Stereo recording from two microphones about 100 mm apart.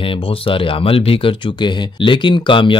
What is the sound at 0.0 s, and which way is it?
Speech, 60° left (ahead or behind).